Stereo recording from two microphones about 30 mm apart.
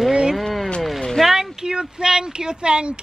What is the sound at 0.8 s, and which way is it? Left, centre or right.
Speech, centre.